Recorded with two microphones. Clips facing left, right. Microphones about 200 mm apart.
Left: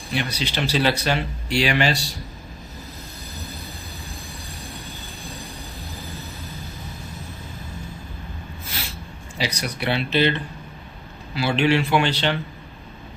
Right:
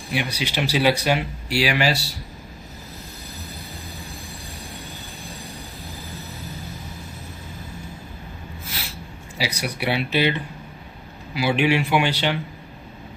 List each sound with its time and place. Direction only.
0.1 s speech: 10° right (ahead or behind)
9.4 s speech: 10° right (ahead or behind)